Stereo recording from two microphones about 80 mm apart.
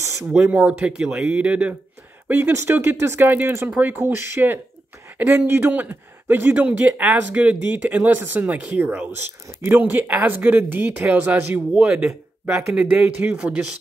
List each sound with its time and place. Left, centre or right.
0.0 s a sound: right
0.3 s speech: centre
11.7 s speech: centre